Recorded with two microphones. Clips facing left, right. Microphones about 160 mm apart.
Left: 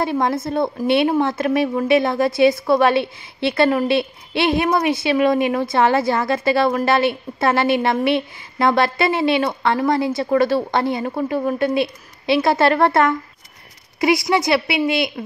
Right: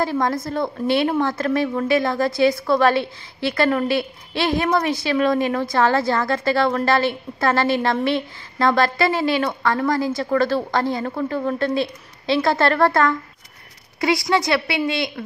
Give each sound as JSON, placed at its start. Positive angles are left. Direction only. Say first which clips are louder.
{"t": 0.0, "sound": "a woman's voice", "louder": "left 1 dB", "side_deg": 20}
{"t": 14.3, "sound": "a woman's voice", "louder": "left 2 dB", "side_deg": 20}